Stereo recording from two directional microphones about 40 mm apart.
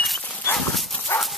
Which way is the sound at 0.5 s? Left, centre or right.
Centre.